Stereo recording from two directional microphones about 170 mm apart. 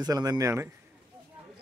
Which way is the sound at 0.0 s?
20° right (ahead or behind).